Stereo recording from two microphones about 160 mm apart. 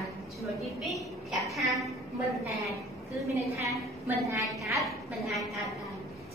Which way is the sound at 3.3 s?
20° right (ahead or behind).